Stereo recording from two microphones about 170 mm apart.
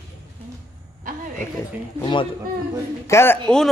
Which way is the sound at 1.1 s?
50° right (ahead or behind).